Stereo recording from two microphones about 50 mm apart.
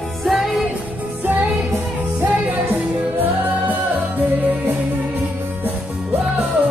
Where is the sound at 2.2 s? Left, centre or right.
Right.